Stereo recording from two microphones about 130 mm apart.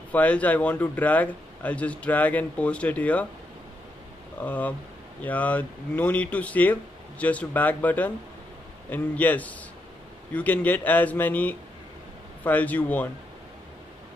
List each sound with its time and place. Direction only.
0.1 s speech: 10° left (ahead or behind)
4.4 s speech: 15° left (ahead or behind)